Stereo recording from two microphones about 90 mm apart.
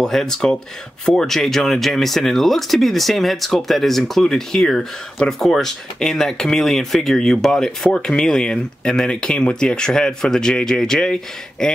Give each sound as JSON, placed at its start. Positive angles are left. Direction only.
{"t": 0.0, "sound": "speech", "side_deg": 5}